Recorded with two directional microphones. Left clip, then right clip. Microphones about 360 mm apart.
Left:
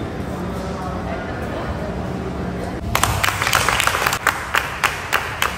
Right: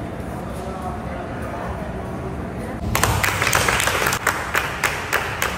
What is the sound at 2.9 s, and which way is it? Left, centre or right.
Applause, centre.